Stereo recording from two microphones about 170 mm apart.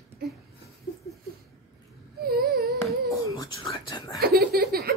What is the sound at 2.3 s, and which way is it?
Humming, centre (ahead or behind).